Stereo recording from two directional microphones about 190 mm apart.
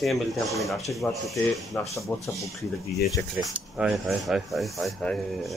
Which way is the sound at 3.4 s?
Centre (ahead or behind).